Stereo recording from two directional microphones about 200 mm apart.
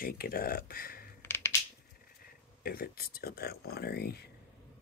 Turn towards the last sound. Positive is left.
turn(degrees=50)  # may be behind; listen again after turning